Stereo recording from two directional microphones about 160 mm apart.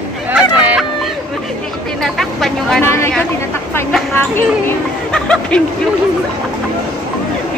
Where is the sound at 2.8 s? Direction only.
15° left (ahead or behind).